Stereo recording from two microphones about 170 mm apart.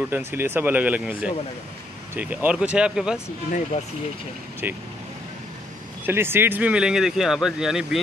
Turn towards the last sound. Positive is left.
turn(degrees=0)  # may be behind; listen again after turning